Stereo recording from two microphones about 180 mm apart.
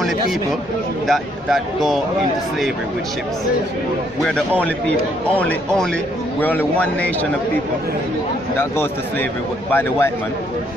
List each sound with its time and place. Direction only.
1.0 s speech: centre (ahead or behind)
4.2 s a man's voice: 5° left (ahead or behind)
8.5 s a man's voice: 10° left (ahead or behind)